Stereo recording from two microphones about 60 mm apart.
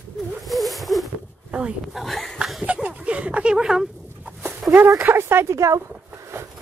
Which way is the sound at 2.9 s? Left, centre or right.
Right.